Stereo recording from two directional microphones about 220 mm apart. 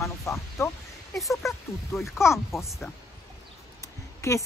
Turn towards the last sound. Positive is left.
turn(degrees=15)  # may be behind; listen again after turning